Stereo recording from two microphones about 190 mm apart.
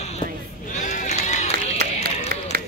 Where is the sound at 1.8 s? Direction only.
50° right (ahead or behind).